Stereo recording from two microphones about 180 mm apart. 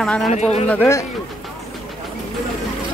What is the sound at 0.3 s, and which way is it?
Speech, 40° left (ahead or behind).